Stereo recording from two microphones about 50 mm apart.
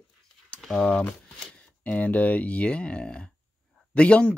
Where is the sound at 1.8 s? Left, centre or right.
Left.